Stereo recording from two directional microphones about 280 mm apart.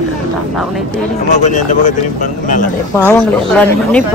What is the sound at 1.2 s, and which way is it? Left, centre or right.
Speech, left.